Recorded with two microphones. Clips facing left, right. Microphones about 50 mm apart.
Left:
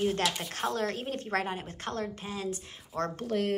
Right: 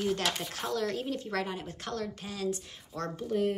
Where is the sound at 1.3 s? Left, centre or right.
Left.